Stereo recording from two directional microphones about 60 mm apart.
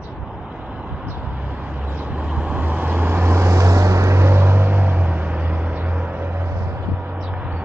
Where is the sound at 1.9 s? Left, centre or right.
Right.